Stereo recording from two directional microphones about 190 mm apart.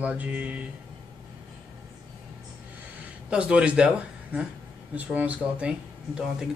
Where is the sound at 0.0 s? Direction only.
5° right (ahead or behind).